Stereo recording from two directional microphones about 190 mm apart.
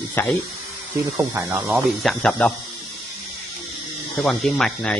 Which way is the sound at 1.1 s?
10° right (ahead or behind).